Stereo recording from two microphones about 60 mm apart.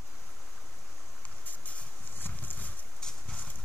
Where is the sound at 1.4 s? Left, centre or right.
Left.